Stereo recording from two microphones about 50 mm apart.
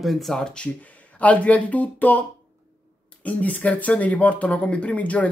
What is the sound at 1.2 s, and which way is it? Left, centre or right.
Speech, left.